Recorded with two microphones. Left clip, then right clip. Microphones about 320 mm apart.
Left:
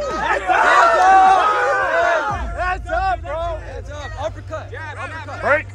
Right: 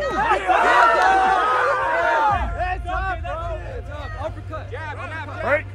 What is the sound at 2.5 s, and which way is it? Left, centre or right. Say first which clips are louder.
Music: left 4 dB; left.